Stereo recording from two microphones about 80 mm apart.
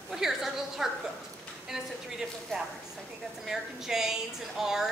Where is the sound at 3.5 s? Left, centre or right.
Centre.